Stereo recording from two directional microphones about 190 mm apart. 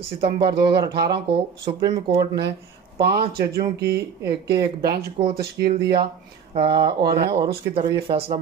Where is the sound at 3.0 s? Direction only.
55° right (ahead or behind).